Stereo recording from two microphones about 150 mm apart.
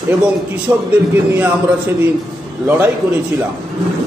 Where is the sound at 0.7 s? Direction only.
15° right (ahead or behind).